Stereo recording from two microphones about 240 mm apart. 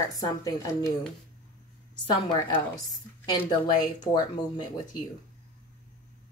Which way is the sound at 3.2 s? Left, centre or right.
Centre.